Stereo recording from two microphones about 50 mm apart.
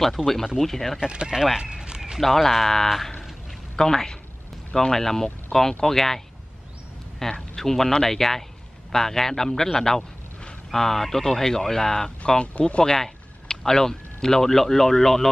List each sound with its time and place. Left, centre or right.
0.2 s speech: centre
1.0 s speech: centre
2.0 s a man's voice: centre